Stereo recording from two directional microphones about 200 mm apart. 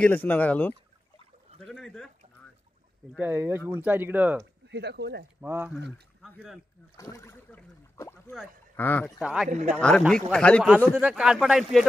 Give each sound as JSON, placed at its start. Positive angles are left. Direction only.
{"t": 0.0, "sound": "speech", "side_deg": 10}
{"t": 3.2, "sound": "speech", "side_deg": -10}
{"t": 4.6, "sound": "speech", "side_deg": -55}
{"t": 5.4, "sound": "speech", "side_deg": -10}
{"t": 7.0, "sound": "speech", "side_deg": 15}
{"t": 9.2, "sound": "speech", "side_deg": -5}
{"t": 11.0, "sound": "speech", "side_deg": -5}